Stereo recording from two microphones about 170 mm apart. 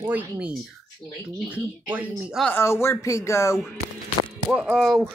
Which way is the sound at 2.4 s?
10° left (ahead or behind).